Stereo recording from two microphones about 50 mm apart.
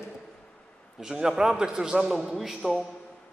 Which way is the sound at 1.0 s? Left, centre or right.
Centre.